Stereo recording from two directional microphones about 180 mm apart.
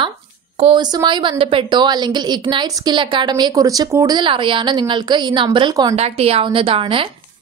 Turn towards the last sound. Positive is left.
turn(degrees=-30)  # may be behind; listen again after turning